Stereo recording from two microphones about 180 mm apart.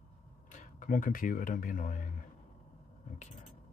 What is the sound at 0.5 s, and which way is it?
Speech, 45° left (ahead or behind).